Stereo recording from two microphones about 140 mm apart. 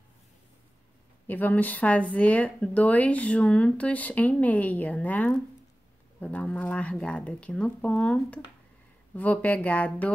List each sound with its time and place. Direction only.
1.2 s a woman's voice: 10° left (ahead or behind)